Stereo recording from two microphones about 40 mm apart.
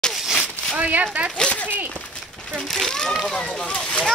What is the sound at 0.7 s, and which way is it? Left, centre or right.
Speech, right.